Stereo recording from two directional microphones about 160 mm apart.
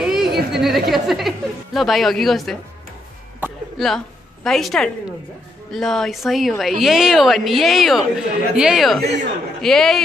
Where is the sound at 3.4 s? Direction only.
10° right (ahead or behind).